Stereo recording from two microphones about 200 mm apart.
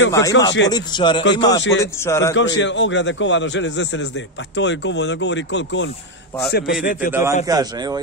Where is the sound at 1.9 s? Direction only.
15° left (ahead or behind).